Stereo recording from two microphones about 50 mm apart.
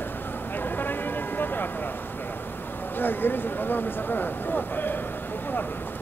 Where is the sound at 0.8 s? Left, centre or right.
Left.